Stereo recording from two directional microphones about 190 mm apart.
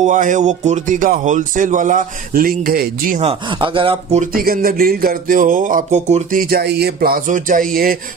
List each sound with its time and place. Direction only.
0.0 s speech: 45° right (ahead or behind)
3.2 s speech: 30° right (ahead or behind)
4.2 s speech: 50° right (ahead or behind)
6.5 s speech: 55° right (ahead or behind)